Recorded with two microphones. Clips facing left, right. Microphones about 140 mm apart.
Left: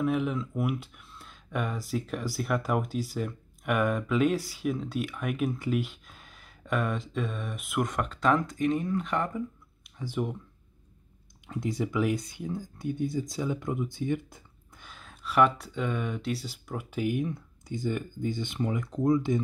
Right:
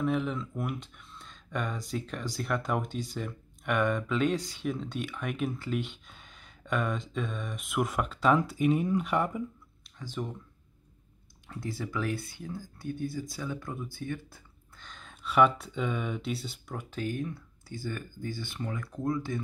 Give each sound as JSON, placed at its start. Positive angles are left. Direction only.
{"t": 0.0, "sound": "speech", "side_deg": 5}
{"t": 9.9, "sound": "speech", "side_deg": 10}
{"t": 11.4, "sound": "speech", "side_deg": 15}
{"t": 16.9, "sound": "speech", "side_deg": 10}